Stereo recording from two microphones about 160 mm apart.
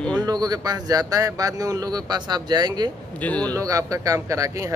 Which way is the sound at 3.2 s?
10° left (ahead or behind).